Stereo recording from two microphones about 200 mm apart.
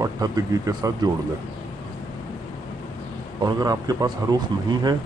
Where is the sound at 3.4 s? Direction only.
20° right (ahead or behind).